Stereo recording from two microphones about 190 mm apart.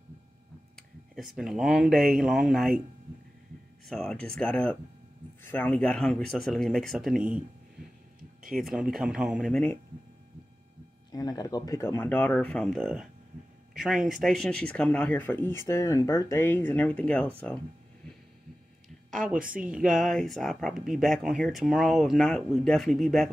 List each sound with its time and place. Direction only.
0.7 s speech: centre (ahead or behind)
3.8 s speech: centre (ahead or behind)
8.2 s a sound: 45° right (ahead or behind)
8.5 s speech: centre (ahead or behind)
9.5 s speech: 10° left (ahead or behind)
11.1 s speech: 20° left (ahead or behind)
19.3 s speech: 45° right (ahead or behind)
19.6 s speech: 5° right (ahead or behind)